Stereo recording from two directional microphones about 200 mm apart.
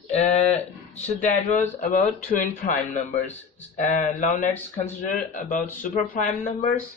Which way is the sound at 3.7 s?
35° left (ahead or behind).